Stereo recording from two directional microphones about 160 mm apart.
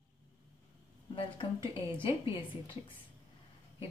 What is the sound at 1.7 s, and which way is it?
Speech, 35° left (ahead or behind).